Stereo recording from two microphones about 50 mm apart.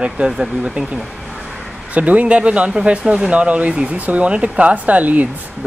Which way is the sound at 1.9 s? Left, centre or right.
Right.